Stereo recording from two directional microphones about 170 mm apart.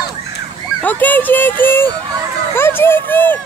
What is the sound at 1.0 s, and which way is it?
Speech, 10° left (ahead or behind).